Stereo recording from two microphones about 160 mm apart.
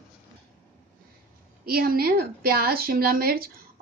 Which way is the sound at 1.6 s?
70° right (ahead or behind).